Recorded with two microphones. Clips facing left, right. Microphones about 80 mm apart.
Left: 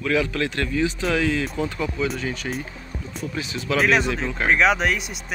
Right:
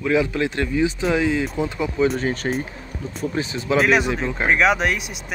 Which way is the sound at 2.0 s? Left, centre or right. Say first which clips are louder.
Right 9 dB; right.